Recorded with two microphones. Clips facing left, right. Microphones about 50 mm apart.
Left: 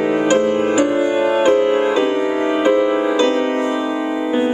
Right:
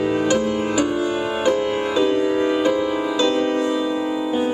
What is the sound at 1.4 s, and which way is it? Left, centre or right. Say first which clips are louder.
Music: left 4 dB; left.